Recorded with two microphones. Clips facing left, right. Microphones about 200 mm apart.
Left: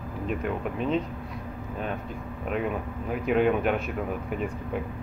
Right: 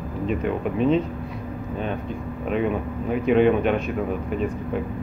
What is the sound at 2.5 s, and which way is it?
Speech, centre (ahead or behind).